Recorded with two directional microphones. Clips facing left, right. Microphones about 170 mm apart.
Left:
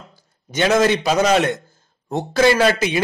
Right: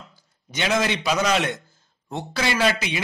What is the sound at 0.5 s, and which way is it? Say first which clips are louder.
A man's voice: left 7 dB; 45° left (ahead or behind).